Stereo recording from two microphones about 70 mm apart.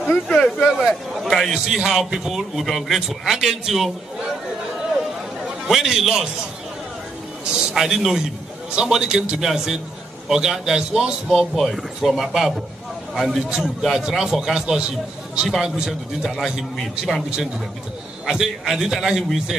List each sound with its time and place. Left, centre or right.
0.1 s speech: centre
0.8 s a man's voice: centre
5.4 s a man's voice: centre
7.4 s a man's voice: centre
18.2 s a man's voice: centre